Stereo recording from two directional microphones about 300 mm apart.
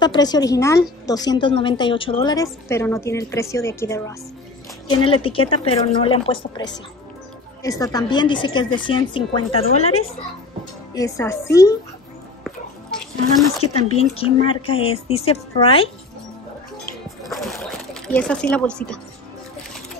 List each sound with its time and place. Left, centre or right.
0.0 s a woman's voice: centre
7.6 s a woman's voice: centre
13.9 s speech: centre
17.3 s a sound: centre
18.0 s speech: centre